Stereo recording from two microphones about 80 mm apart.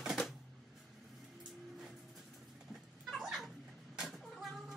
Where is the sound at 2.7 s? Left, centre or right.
Centre.